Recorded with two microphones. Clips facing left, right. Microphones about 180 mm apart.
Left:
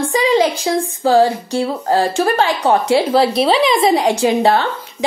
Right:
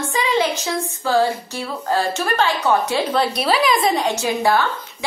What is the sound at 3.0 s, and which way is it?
A woman's voice, 25° left (ahead or behind).